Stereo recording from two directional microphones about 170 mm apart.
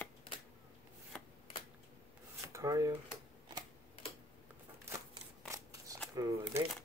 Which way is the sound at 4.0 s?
35° left (ahead or behind).